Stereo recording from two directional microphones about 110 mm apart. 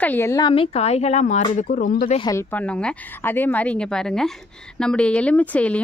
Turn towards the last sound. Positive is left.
turn(degrees=10)  # may be behind; listen again after turning